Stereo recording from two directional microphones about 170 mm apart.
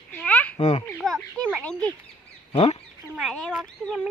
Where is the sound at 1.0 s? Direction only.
Centre (ahead or behind).